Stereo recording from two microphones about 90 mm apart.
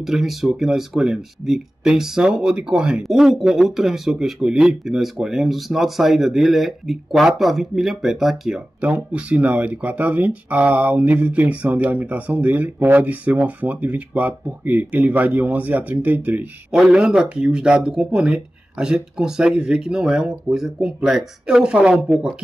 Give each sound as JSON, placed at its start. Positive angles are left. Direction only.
{"t": 0.0, "sound": "speech", "side_deg": 0}
{"t": 8.8, "sound": "speech", "side_deg": -15}
{"t": 16.7, "sound": "speech", "side_deg": -5}